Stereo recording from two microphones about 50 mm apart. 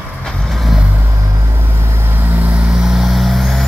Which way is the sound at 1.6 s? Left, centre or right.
Right.